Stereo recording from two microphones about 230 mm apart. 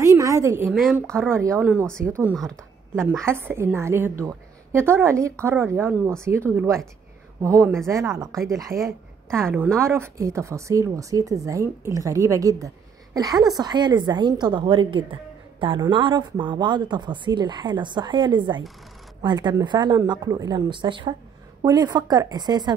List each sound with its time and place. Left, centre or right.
0.0 s a sound: centre
0.8 s speech: centre
1.3 s speech: centre
3.3 s speech: centre